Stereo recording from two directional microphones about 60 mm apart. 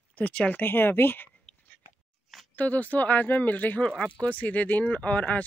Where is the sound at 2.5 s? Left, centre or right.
Left.